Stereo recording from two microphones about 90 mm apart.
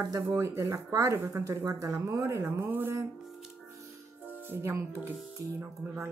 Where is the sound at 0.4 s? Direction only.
35° right (ahead or behind).